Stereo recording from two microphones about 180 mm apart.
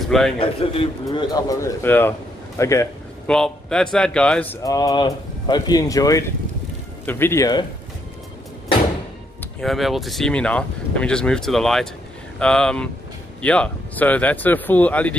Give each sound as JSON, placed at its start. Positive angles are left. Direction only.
{"t": 0.4, "sound": "a man's voice", "side_deg": 30}
{"t": 1.0, "sound": "speech", "side_deg": 20}
{"t": 3.3, "sound": "speech", "side_deg": 5}
{"t": 9.4, "sound": "speech", "side_deg": 0}